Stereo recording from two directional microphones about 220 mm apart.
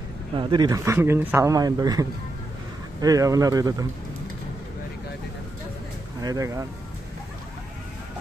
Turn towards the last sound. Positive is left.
turn(degrees=-15)  # may be behind; listen again after turning